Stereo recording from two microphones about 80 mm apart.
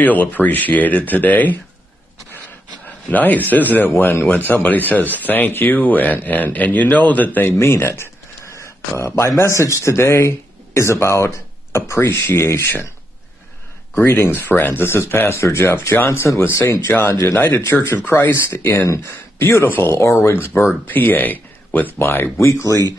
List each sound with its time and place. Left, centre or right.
0.0 s speech: left
3.1 s speech: left
13.9 s speech: left
20.8 s speech: left